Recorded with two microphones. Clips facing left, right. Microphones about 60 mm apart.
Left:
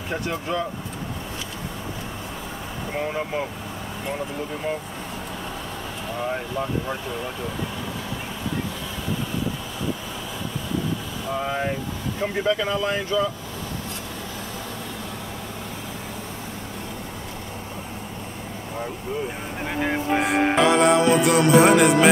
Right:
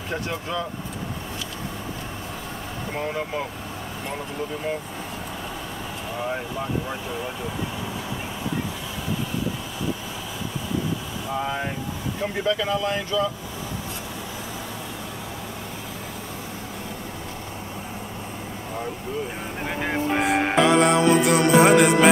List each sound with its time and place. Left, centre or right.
0.1 s speech: centre
2.9 s speech: centre
11.2 s speech: centre
19.6 s music: centre